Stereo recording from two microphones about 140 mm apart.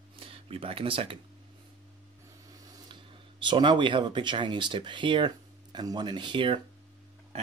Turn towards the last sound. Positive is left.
turn(degrees=-50)  # may be behind; listen again after turning